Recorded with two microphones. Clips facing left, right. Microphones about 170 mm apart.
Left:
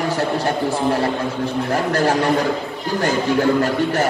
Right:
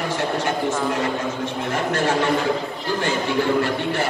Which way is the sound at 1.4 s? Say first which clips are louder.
Left 4 dB; 35° left (ahead or behind).